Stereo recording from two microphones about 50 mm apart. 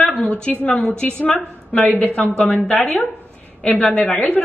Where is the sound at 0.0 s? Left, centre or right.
Left.